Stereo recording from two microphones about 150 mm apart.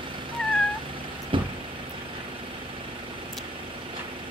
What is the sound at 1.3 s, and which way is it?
Vehicle, 35° right (ahead or behind).